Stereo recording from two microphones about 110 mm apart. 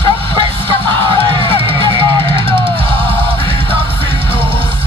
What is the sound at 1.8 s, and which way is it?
Music, 45° right (ahead or behind).